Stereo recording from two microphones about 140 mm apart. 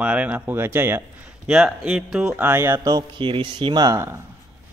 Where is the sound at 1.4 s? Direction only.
5° right (ahead or behind).